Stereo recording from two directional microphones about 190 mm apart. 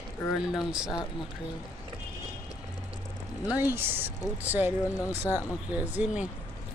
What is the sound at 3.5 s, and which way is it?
Speech, 10° right (ahead or behind).